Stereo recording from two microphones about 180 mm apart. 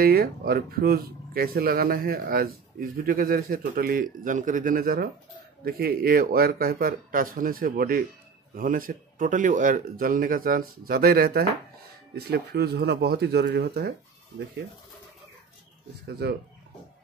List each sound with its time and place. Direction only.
0.0 s speech: 55° right (ahead or behind)
16.2 s speech: 65° right (ahead or behind)